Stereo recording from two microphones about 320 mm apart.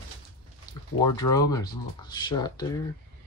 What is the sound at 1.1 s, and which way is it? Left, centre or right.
Speech, centre.